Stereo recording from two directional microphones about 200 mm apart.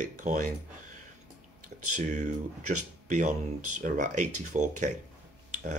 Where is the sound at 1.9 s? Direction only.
40° right (ahead or behind).